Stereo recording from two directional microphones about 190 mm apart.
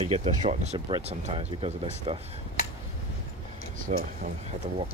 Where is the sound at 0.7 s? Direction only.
25° right (ahead or behind).